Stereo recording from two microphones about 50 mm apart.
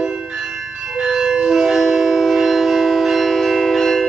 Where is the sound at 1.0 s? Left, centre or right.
Centre.